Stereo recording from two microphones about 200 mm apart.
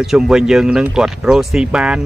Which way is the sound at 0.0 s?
Centre (ahead or behind).